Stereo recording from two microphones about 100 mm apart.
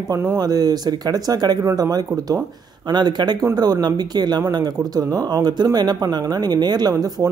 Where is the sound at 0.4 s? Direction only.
40° right (ahead or behind).